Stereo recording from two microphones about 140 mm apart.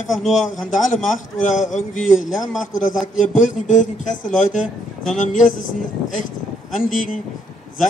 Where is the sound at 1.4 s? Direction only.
65° left (ahead or behind).